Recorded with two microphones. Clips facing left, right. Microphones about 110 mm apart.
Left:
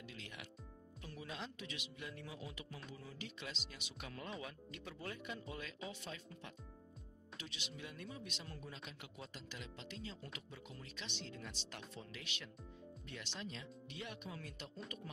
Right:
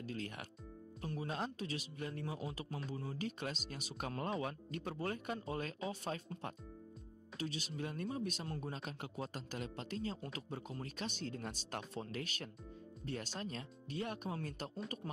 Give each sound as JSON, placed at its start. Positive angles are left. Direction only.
{"t": 0.0, "sound": "a man's voice", "side_deg": -45}